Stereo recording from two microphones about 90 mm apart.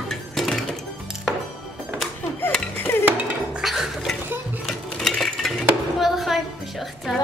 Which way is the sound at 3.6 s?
5° right (ahead or behind).